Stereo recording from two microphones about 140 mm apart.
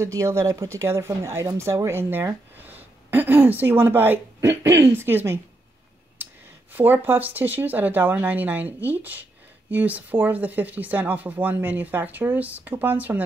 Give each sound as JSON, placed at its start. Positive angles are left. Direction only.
{"t": 0.0, "sound": "speech", "side_deg": -20}
{"t": 6.7, "sound": "speech", "side_deg": -15}